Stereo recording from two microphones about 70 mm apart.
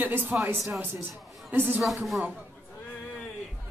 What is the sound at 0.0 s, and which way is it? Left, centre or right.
Speech, right.